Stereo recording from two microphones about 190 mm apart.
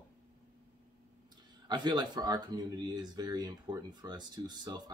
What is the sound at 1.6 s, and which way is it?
Speech, 25° right (ahead or behind).